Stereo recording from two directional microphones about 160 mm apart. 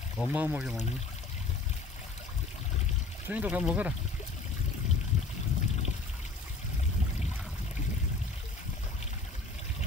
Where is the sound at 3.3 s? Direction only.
10° right (ahead or behind).